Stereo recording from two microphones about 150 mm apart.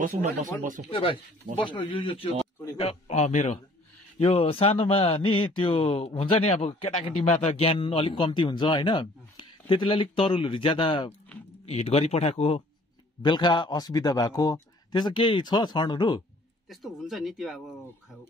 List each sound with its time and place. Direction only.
0.0 s speech: 60° right (ahead or behind)
0.8 s speech: 40° left (ahead or behind)
4.2 s speech: 40° left (ahead or behind)
13.2 s speech: 30° left (ahead or behind)
16.6 s speech: centre (ahead or behind)